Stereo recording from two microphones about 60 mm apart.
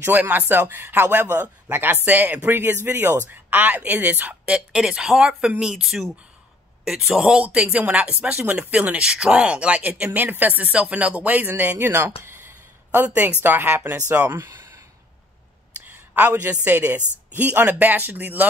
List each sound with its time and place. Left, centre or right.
0.0 s speech: right
4.5 s speech: centre
7.4 s speech: right
8.6 s speech: right
11.9 s speech: right
12.9 s speech: right
15.8 s speech: right